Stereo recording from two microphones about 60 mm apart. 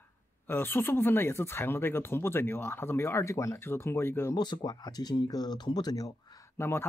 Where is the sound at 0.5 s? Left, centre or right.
Left.